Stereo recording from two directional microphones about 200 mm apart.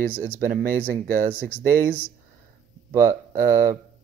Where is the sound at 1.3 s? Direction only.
10° left (ahead or behind).